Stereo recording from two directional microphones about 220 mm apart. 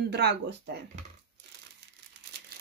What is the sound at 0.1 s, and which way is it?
Speech, 50° right (ahead or behind).